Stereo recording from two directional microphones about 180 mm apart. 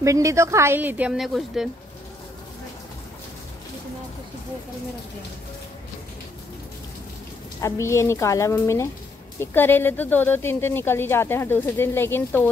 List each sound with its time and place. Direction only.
0.0 s speech: 15° right (ahead or behind); by 1.7 s centre (ahead or behind)
7.6 s speech: 15° left (ahead or behind)